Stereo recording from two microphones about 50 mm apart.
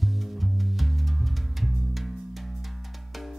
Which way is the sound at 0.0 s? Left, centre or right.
Centre.